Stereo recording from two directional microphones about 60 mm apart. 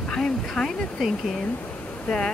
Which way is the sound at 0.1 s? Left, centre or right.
Centre.